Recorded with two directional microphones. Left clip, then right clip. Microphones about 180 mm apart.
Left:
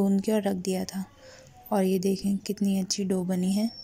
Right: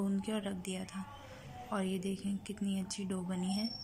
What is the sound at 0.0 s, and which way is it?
A woman's voice, 25° left (ahead or behind).